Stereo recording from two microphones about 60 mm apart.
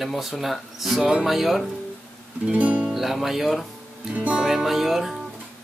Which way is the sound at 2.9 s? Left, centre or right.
Centre.